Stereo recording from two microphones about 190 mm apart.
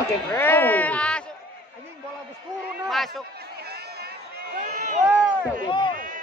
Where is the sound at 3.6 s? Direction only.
55° right (ahead or behind).